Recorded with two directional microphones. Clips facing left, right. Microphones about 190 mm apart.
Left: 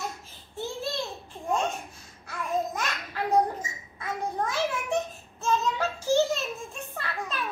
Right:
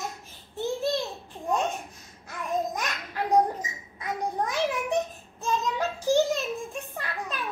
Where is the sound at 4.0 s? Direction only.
15° right (ahead or behind).